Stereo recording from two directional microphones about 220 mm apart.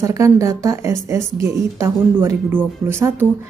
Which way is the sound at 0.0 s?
15° right (ahead or behind).